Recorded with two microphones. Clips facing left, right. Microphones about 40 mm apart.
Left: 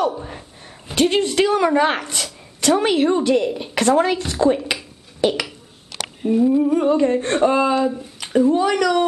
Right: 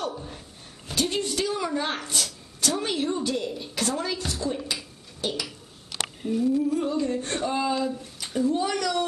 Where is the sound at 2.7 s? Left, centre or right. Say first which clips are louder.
Left 11 dB; left.